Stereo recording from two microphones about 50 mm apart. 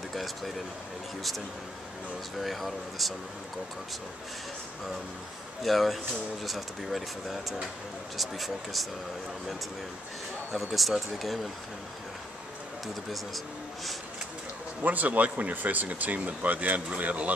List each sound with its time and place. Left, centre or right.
0.1 s speech: centre
2.4 s speech: centre
5.6 s speech: centre
10.5 s speech: centre
12.8 s speech: centre
14.8 s speech: right